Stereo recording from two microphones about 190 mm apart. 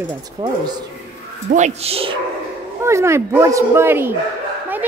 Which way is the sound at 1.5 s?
35° right (ahead or behind).